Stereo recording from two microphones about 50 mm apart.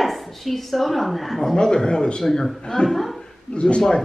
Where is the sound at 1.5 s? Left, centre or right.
Centre.